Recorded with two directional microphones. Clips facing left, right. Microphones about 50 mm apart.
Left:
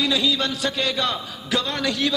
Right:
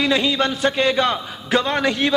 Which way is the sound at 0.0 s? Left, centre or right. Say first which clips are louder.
Right 3 dB; right.